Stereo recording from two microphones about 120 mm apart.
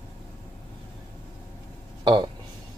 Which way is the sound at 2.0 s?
40° right (ahead or behind).